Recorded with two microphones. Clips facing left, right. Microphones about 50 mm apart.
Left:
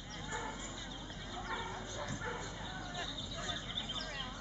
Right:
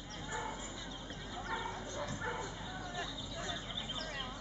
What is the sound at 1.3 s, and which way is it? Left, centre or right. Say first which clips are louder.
Bow-wow: right 1 dB; centre.